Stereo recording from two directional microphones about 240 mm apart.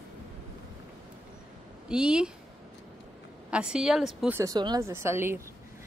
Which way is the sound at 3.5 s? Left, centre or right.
Centre.